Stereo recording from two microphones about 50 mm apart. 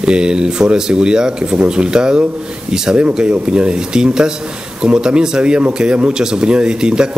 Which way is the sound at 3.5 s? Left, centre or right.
Centre.